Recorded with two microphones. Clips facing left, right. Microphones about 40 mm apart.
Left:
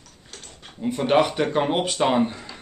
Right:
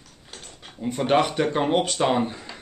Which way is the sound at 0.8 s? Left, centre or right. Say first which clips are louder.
Left 1 dB; centre.